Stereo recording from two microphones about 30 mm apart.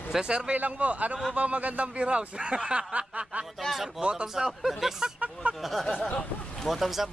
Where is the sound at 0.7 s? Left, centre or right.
Right.